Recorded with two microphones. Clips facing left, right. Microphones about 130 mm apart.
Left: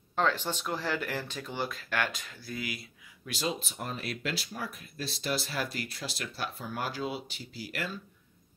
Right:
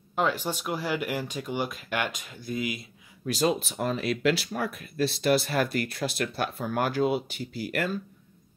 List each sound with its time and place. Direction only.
0.1 s speech: 10° right (ahead or behind)
3.4 s speech: 80° right; by 7.9 s 55° right (ahead or behind)